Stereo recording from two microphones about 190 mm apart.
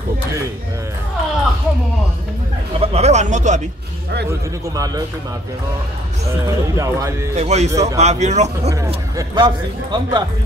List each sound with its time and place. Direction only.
2.8 s speech: 35° right (ahead or behind)
4.3 s speech: 20° right (ahead or behind)
6.4 s speech: 15° right (ahead or behind)
7.3 s speech: 35° right (ahead or behind)
7.7 s speech: 15° right (ahead or behind)
8.0 s speech: 35° right (ahead or behind)
8.8 s speech: 20° right (ahead or behind)